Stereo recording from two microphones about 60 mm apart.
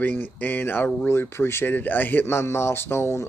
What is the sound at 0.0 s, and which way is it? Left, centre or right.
Speech, left.